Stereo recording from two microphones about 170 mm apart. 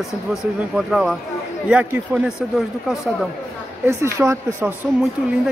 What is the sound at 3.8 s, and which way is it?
Speech, 15° right (ahead or behind).